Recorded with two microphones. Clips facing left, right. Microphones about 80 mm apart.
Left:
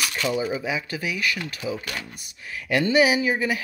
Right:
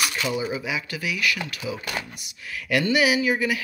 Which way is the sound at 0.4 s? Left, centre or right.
Left.